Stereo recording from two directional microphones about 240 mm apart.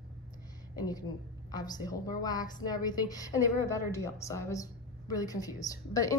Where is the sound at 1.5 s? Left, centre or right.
Centre.